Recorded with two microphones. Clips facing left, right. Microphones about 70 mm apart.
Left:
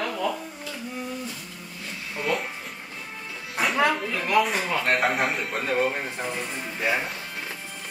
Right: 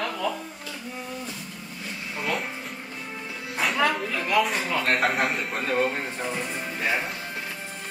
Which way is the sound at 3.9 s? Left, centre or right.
Centre.